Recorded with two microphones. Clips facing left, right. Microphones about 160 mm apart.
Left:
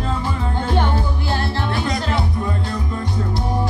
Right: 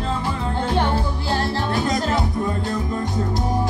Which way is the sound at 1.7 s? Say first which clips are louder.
Right 2 dB; 45° right (ahead or behind).